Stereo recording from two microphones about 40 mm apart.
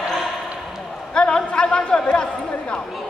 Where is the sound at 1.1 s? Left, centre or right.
Left.